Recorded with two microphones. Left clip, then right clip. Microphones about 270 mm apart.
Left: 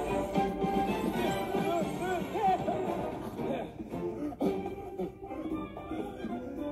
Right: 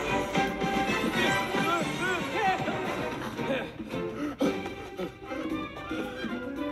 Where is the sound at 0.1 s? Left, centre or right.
Right.